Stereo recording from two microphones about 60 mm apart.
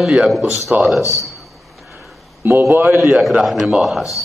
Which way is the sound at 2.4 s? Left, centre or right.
Right.